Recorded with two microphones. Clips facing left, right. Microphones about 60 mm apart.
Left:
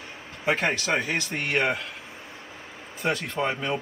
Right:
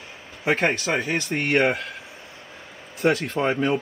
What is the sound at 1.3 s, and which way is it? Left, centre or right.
Speech, right.